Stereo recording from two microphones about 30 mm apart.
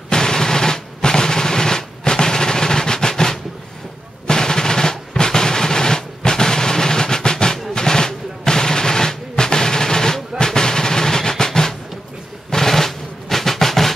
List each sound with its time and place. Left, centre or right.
0.1 s machine gun: left
4.3 s drum roll: centre
7.7 s a sound: left
9.3 s drum: left
12.4 s drum roll: centre